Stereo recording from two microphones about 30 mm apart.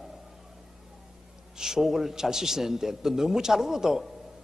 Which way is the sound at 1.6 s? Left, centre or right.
Centre.